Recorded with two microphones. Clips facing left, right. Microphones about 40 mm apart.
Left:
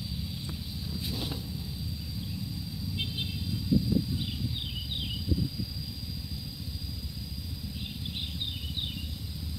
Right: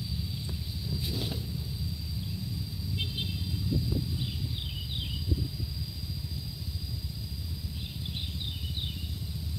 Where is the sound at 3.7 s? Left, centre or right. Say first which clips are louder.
Left 6 dB; left.